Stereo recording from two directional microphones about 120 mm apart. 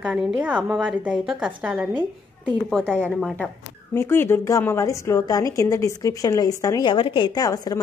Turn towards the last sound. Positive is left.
turn(degrees=35)  # may be behind; listen again after turning